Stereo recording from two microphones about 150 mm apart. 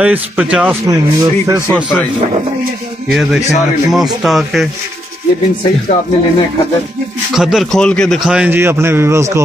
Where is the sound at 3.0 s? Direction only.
Centre (ahead or behind).